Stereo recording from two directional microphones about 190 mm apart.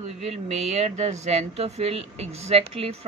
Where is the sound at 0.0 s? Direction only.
35° right (ahead or behind).